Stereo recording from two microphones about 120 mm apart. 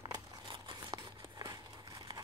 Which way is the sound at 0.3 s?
35° right (ahead or behind).